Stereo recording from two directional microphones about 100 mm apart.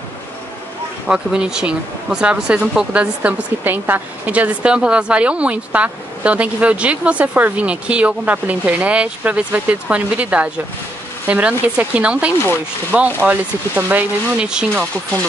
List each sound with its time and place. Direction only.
1.0 s speech: 10° right (ahead or behind)